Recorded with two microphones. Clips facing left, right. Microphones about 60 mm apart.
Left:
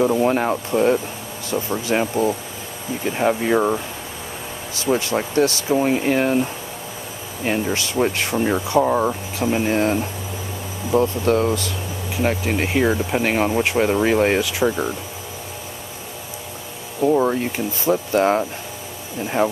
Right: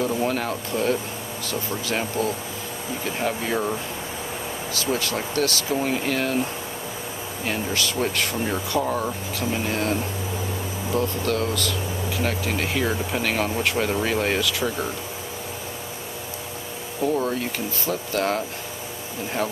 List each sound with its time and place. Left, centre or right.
0.0 s speech: left
4.9 s speech: left
7.4 s speech: centre
11.0 s speech: left
17.0 s speech: left